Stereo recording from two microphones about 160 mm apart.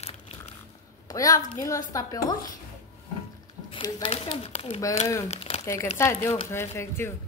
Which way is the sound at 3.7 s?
35° left (ahead or behind).